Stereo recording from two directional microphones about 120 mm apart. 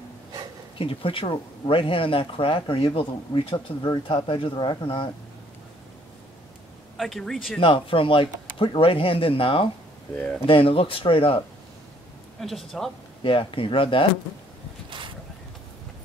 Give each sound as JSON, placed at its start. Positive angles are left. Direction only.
{"t": 0.7, "sound": "speech", "side_deg": 50}
{"t": 7.0, "sound": "speech", "side_deg": 0}
{"t": 7.6, "sound": "speech", "side_deg": 45}
{"t": 10.1, "sound": "speech", "side_deg": 10}
{"t": 10.4, "sound": "speech", "side_deg": 50}
{"t": 12.4, "sound": "speech", "side_deg": 0}
{"t": 13.2, "sound": "speech", "side_deg": 45}